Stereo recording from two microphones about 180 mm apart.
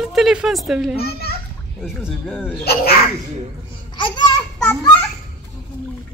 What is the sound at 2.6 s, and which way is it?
Speech, 60° left (ahead or behind).